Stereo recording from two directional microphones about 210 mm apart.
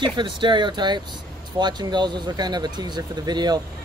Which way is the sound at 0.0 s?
20° right (ahead or behind).